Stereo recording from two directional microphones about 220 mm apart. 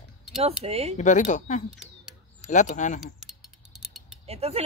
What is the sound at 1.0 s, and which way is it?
Speech, 35° left (ahead or behind).